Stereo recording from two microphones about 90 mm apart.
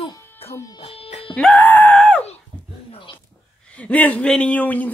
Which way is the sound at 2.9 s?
90° left.